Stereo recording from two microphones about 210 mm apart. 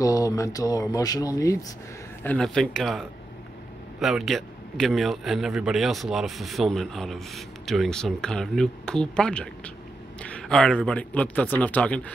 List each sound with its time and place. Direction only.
0.0 s speech: 15° left (ahead or behind)
2.2 s a man's voice: 5° left (ahead or behind)